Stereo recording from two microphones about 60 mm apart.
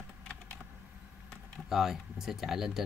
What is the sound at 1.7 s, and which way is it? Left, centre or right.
Speech, centre.